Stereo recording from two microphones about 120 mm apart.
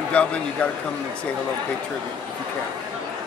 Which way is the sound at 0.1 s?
10° left (ahead or behind).